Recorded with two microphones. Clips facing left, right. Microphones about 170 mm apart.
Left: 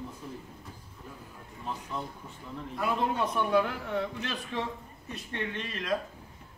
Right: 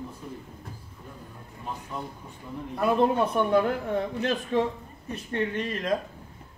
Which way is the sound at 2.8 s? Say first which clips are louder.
Right 7 dB; 50° right (ahead or behind).